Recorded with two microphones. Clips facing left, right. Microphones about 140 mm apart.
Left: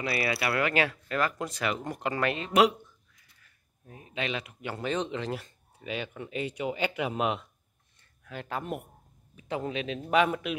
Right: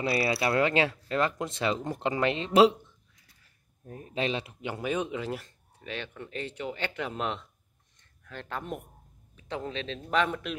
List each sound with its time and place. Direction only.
0.0 s speech: 25° right (ahead or behind)
3.8 s speech: 40° right (ahead or behind)
4.6 s speech: 10° right (ahead or behind)
5.8 s a man's voice: 10° left (ahead or behind)